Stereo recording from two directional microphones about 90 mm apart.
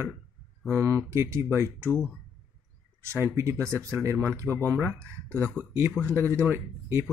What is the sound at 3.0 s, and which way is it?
Speech, 30° right (ahead or behind).